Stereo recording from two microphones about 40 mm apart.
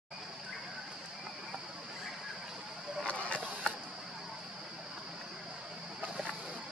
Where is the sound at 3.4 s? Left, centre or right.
Right.